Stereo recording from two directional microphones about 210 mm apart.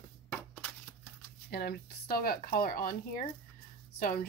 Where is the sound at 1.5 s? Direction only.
50° left (ahead or behind).